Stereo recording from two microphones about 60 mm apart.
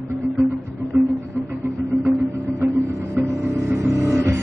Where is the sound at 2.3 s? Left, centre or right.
Right.